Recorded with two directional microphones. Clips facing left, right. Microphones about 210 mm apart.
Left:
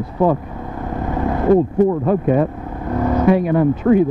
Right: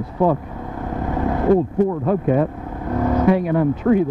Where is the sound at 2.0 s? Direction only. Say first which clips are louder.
Left 2 dB; 20° left (ahead or behind).